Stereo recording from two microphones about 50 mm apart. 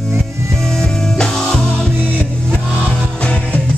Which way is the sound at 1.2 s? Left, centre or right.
Centre.